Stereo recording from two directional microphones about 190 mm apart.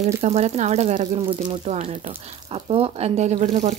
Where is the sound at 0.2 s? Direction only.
35° right (ahead or behind).